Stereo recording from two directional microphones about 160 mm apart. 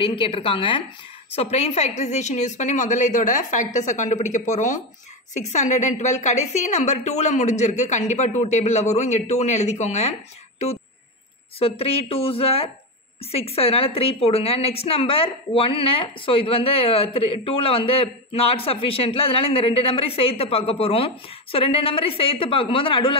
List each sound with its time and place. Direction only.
0.0 s a woman's voice: 35° left (ahead or behind)
11.6 s a woman's voice: 35° left (ahead or behind)